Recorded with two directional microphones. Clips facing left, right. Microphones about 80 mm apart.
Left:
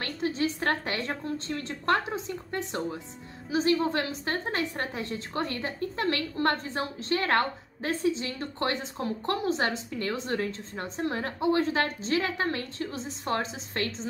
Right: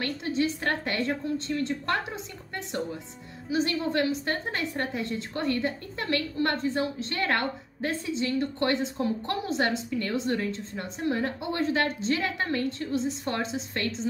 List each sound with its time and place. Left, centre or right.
0.0 s a sound: left
1.0 s a woman's voice: left
3.4 s a woman's voice: left